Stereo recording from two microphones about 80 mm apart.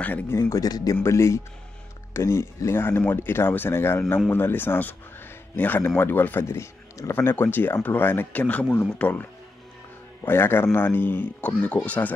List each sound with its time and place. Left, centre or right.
0.3 s speech: left
0.6 s a man's voice: left
1.0 s speech: left; by 12.1 s centre